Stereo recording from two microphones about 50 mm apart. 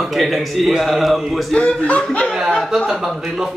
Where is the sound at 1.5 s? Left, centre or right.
Centre.